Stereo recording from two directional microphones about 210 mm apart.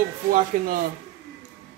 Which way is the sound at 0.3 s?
40° right (ahead or behind).